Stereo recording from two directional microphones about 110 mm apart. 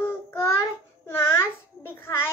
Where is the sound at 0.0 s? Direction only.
25° left (ahead or behind).